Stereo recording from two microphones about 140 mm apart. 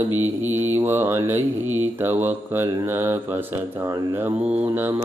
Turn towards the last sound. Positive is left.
turn(degrees=-15)  # may be behind; listen again after turning